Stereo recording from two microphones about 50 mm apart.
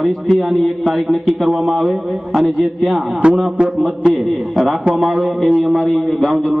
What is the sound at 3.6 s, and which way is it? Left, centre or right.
Speech, right.